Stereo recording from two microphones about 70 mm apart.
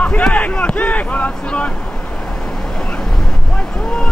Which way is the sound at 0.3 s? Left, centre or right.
Centre.